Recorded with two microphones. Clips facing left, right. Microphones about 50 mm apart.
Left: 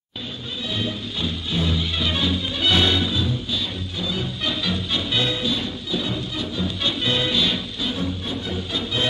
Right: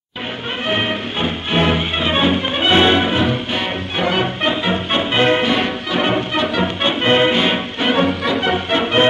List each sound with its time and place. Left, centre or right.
0.7 s music: right
4.4 s music: right
6.8 s music: right